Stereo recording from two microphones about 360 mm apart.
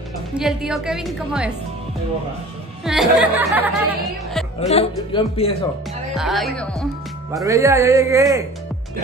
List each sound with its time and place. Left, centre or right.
0.4 s a woman's voice: centre
2.8 s a woman's voice: centre
4.6 s a man's voice: centre
6.1 s a woman's voice: centre
7.3 s a man's voice: centre